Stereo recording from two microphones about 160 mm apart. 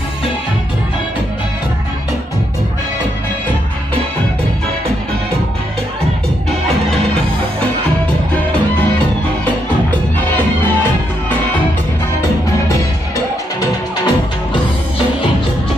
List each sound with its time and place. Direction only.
10.6 s music: 10° left (ahead or behind)
13.6 s music: 25° left (ahead or behind)